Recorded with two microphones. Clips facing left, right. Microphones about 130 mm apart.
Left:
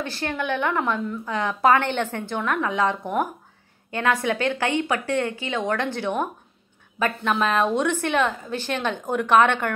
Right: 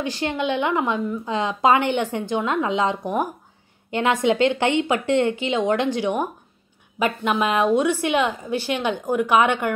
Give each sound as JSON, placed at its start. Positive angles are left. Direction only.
{"t": 0.0, "sound": "a woman's voice", "side_deg": -15}